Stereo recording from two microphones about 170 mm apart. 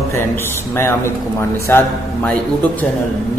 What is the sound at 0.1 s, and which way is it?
A man's voice, 15° left (ahead or behind).